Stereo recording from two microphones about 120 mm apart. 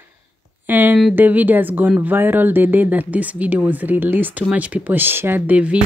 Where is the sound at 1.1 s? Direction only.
15° right (ahead or behind).